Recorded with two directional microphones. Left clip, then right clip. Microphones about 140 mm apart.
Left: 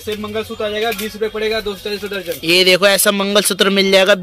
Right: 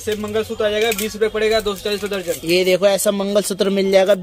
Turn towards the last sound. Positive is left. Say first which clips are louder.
# left 3 dB
turn(degrees=10)  # may be behind; listen again after turning